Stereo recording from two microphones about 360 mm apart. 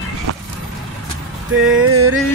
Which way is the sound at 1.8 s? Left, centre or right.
Right.